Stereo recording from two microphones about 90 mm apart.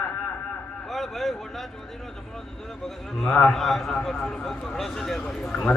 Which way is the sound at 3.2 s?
15° left (ahead or behind).